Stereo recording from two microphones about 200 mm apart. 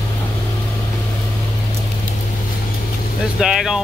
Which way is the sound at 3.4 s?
5° right (ahead or behind).